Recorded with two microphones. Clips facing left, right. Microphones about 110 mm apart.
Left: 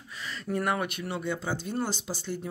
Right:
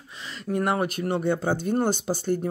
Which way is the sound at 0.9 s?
45° right (ahead or behind).